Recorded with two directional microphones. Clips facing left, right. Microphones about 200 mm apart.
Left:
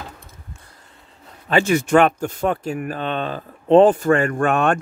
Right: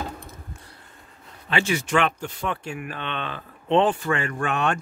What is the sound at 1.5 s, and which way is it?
Speech, 45° left (ahead or behind).